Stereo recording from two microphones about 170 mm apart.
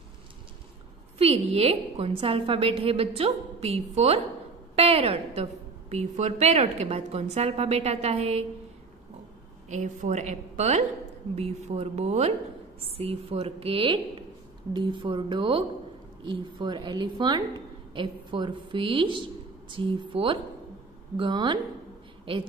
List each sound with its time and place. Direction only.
1.1 s a woman's voice: 35° right (ahead or behind)
9.7 s a woman's voice: 45° right (ahead or behind); by 21.5 s 30° right (ahead or behind)